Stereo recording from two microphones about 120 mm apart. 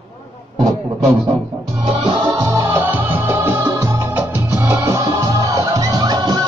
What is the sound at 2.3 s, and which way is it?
Music, 25° right (ahead or behind).